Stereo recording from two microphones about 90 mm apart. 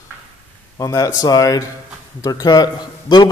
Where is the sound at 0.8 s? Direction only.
40° left (ahead or behind).